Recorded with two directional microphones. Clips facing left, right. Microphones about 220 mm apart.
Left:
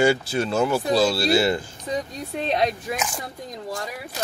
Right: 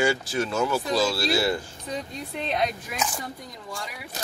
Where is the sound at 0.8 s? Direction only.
60° left (ahead or behind).